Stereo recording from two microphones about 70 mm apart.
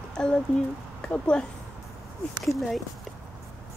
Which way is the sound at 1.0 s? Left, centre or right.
Centre.